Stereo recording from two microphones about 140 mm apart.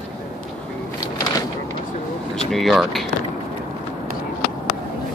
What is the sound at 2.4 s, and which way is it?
Speech, centre (ahead or behind).